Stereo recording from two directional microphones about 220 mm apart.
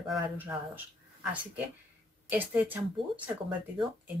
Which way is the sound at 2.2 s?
10° right (ahead or behind).